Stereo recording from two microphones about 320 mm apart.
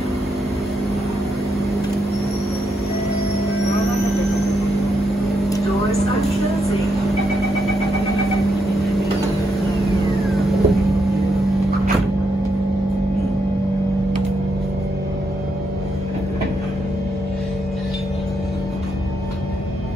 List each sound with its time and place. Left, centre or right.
3.8 s vehicle: centre
10.2 s vehicle: centre